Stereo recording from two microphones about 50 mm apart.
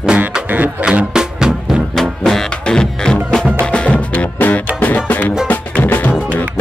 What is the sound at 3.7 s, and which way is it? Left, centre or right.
Music, left.